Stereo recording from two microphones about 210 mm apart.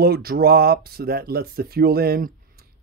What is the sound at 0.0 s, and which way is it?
Speech, 45° right (ahead or behind).